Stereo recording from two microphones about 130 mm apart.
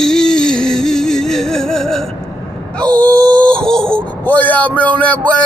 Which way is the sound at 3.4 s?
5° left (ahead or behind).